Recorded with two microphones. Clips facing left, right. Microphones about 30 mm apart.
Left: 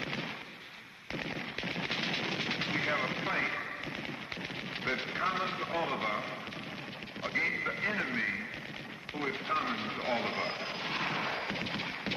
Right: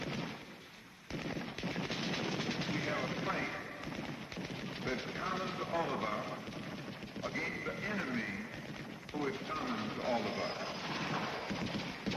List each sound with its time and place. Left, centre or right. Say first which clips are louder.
0.0 s artillery fire: left 3 dB; left
1.1 s machine gun: left 3 dB; left
4.8 s speech: left 6 dB; left
7.2 s radio: left 7 dB; left